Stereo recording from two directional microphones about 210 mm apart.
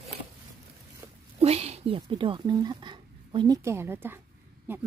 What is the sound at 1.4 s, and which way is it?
Speech, 30° right (ahead or behind).